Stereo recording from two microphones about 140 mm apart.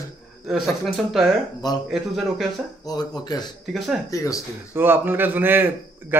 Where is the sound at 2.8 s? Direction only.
30° left (ahead or behind).